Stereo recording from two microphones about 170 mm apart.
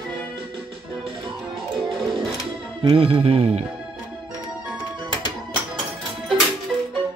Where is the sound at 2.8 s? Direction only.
30° right (ahead or behind).